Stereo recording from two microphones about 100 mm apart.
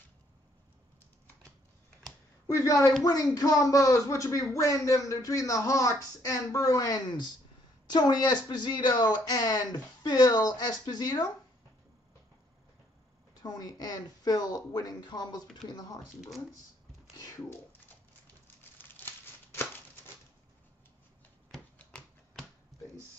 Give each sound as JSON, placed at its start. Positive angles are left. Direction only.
{"t": 2.4, "sound": "a woman's voice", "side_deg": 35}
{"t": 13.3, "sound": "speech", "side_deg": 40}
{"t": 18.8, "sound": "a sound", "side_deg": 20}
{"t": 21.7, "sound": "typewriter", "side_deg": 10}